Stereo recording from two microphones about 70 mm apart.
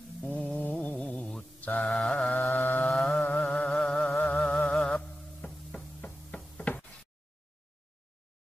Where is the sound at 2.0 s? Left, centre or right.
Centre.